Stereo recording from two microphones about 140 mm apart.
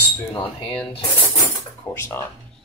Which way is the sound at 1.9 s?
20° left (ahead or behind).